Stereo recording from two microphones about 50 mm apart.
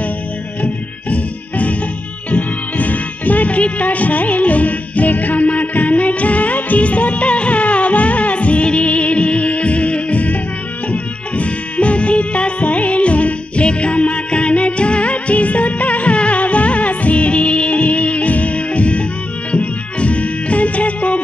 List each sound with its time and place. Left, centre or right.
1.1 s music: left